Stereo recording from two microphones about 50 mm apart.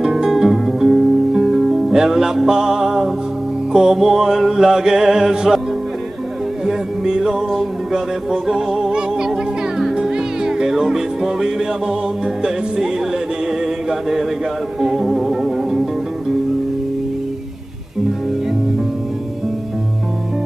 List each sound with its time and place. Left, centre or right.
0.0 s music: centre
6.6 s music: centre
14.8 s music: centre